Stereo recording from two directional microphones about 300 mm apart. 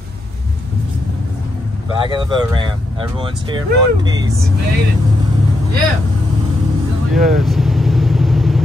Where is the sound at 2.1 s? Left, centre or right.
Centre.